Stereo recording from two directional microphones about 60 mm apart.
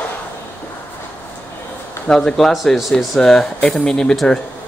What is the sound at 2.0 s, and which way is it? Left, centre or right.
Speech, centre.